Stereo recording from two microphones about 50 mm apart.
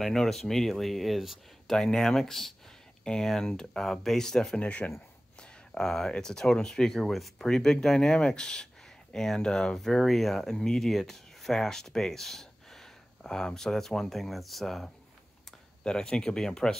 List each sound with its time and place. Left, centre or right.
0.0 s speech: centre
1.7 s speech: centre
4.6 s speech: left
5.4 s speech: centre
9.8 s speech: centre
15.8 s speech: centre